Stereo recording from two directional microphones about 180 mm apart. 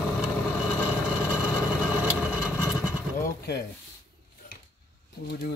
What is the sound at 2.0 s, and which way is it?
Vehicle, 5° right (ahead or behind).